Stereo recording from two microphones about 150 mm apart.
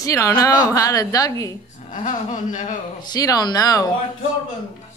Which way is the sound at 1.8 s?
60° left (ahead or behind).